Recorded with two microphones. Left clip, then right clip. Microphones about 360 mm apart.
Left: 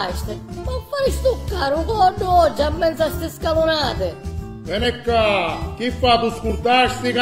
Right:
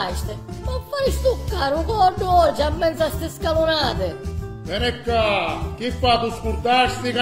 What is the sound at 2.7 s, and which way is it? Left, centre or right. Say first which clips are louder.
Music: left 2 dB; left.